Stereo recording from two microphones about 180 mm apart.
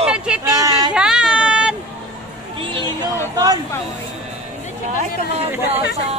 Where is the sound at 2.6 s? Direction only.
30° right (ahead or behind).